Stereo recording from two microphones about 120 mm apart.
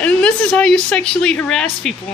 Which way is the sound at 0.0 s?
10° left (ahead or behind).